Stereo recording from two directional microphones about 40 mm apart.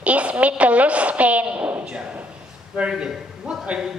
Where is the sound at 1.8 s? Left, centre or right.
Right.